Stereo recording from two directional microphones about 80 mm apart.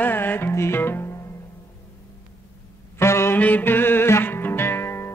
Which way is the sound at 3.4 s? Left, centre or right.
Left.